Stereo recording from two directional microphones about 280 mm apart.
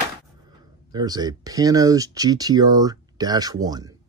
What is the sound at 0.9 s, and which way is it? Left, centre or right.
Speech, centre.